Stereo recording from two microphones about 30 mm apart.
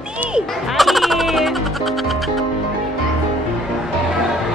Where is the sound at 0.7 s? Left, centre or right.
Centre.